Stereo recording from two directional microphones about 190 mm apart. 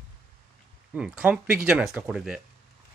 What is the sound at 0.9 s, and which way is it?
Speech, 5° right (ahead or behind).